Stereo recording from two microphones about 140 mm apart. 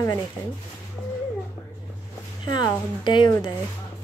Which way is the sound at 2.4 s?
30° left (ahead or behind).